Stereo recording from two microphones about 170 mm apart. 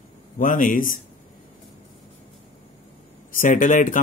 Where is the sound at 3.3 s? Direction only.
50° left (ahead or behind).